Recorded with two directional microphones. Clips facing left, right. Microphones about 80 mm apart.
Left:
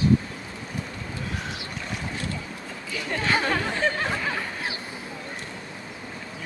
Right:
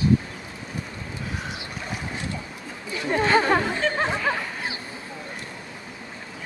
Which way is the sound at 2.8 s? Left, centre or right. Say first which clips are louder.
Right 4 dB; right.